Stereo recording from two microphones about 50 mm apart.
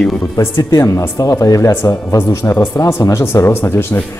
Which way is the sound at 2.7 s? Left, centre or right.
Left.